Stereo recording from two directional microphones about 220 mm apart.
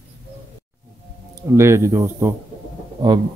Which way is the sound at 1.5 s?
10° right (ahead or behind).